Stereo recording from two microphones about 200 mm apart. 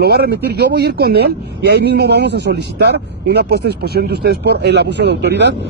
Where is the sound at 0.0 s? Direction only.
55° right (ahead or behind).